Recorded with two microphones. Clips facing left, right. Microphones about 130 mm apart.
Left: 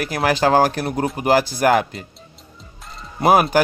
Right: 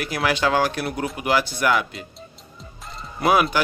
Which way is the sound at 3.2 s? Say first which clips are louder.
Left 4 dB; 45° left (ahead or behind).